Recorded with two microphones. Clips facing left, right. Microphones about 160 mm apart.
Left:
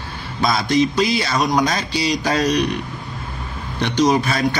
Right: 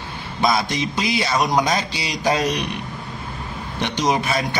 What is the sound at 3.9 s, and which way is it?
Speech, 20° right (ahead or behind).